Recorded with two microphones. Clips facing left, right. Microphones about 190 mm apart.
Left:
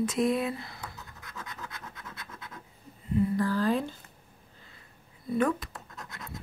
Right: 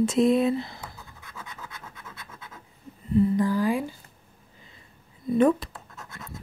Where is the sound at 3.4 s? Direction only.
15° right (ahead or behind).